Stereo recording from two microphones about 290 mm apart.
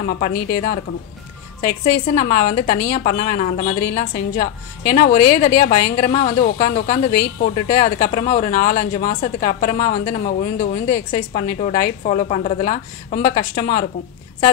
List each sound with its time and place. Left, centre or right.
0.0 s a woman's voice: left